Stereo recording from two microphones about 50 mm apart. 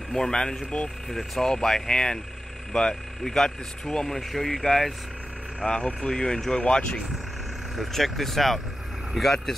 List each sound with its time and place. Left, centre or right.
0.1 s speech: centre
5.6 s speech: centre
7.7 s speech: centre